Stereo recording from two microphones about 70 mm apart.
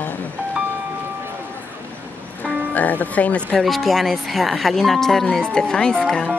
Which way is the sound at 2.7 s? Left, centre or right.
Left.